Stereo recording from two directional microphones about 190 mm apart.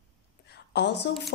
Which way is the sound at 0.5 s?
65° left (ahead or behind).